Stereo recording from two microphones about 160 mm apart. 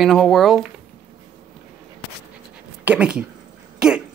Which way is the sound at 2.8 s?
5° right (ahead or behind).